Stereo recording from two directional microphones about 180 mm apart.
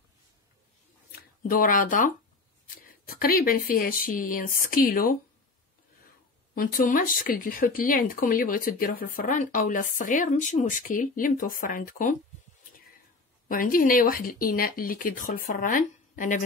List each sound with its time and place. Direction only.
1.5 s speech: 50° left (ahead or behind)
6.5 s speech: 50° left (ahead or behind)
13.5 s speech: 50° left (ahead or behind)